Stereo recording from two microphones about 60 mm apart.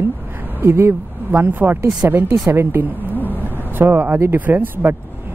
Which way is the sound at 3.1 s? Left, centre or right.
Left.